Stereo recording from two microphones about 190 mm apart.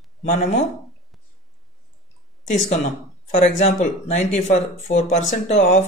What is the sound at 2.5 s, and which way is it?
A man's voice, 40° left (ahead or behind).